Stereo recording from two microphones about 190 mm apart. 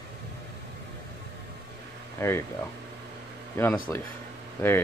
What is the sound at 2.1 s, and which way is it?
Speech, 15° left (ahead or behind).